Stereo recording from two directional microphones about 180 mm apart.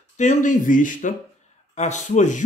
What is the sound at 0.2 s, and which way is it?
Speech, 45° left (ahead or behind).